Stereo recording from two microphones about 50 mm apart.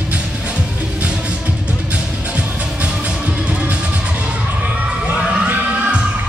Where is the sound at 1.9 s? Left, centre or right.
Right.